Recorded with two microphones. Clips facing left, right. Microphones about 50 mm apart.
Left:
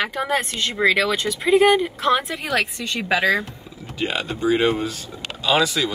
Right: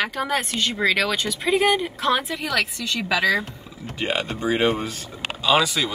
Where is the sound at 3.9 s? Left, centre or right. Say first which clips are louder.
Even; right.